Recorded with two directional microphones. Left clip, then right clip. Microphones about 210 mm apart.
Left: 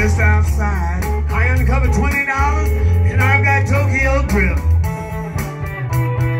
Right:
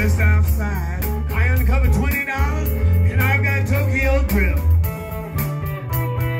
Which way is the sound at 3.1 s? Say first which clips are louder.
Left 6 dB; 10° right (ahead or behind).